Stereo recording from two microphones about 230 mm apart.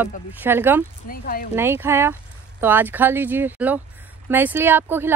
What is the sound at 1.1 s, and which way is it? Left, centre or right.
Speech, left.